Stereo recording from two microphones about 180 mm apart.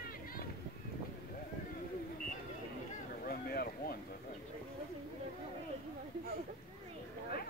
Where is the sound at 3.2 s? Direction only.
55° left (ahead or behind).